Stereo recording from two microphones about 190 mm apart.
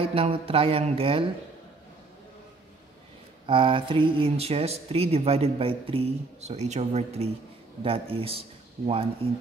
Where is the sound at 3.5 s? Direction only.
25° right (ahead or behind).